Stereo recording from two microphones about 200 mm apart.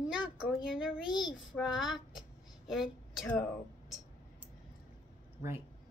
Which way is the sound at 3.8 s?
Centre (ahead or behind).